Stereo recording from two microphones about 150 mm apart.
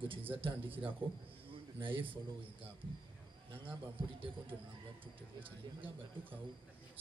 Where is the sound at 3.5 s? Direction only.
35° right (ahead or behind).